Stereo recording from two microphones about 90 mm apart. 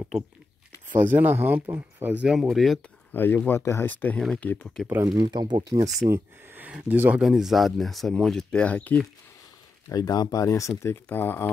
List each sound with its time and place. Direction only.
0.9 s speech: 20° right (ahead or behind)
2.2 s speech: 5° right (ahead or behind)
3.1 s speech: 20° left (ahead or behind)
5.0 s speech: 60° right (ahead or behind)
6.0 s speech: 30° right (ahead or behind)
6.6 s speech: 20° right (ahead or behind)
7.2 s speech: 5° right (ahead or behind); by 9.0 s 15° left (ahead or behind)
9.8 s speech: 45° left (ahead or behind)
10.8 s speech: 25° left (ahead or behind)